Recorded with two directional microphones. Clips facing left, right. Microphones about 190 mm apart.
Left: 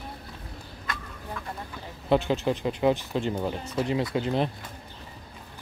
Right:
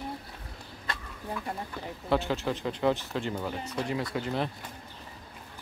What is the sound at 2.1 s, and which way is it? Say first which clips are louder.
Speech: left 5 dB; 20° left (ahead or behind).